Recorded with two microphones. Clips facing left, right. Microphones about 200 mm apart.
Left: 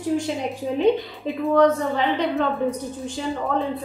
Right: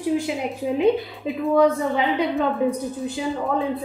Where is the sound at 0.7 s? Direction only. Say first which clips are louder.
Even; 5° right (ahead or behind).